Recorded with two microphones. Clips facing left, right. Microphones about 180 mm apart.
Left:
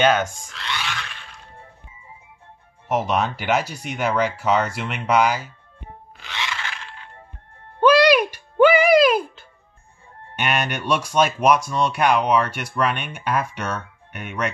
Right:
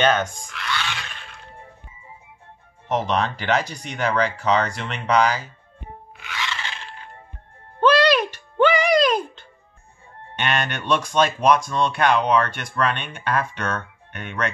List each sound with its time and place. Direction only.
0.0 s speech: 10° left (ahead or behind)
0.5 s speech: 30° left (ahead or behind)
2.9 s speech: 10° left (ahead or behind)
6.1 s music: 30° left (ahead or behind)
6.6 s a sound: 30° right (ahead or behind)
7.8 s music: 10° left (ahead or behind)
10.3 s speech: 10° left (ahead or behind)